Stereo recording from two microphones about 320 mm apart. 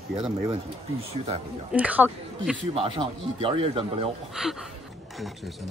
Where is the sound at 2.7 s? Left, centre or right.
Centre.